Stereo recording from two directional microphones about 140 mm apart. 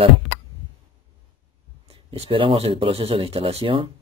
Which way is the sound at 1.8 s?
45° right (ahead or behind).